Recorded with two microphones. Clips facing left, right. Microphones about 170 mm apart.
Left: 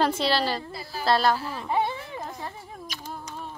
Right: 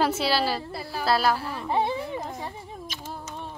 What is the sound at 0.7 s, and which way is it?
Speech, 65° right (ahead or behind).